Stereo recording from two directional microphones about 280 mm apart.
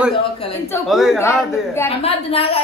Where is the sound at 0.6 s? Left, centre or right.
Centre.